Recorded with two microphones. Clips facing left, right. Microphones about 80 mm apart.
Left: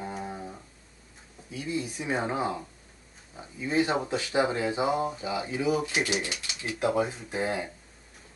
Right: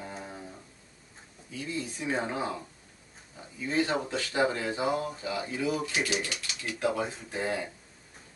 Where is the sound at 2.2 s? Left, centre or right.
Left.